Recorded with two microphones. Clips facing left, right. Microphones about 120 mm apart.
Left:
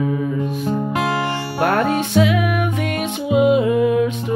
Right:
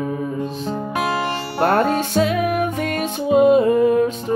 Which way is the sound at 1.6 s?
40° right (ahead or behind).